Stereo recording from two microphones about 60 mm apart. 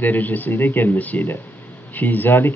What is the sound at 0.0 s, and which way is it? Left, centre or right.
Speech, left.